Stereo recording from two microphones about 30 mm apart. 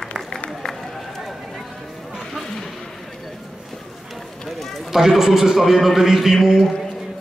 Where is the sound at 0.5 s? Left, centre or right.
Centre.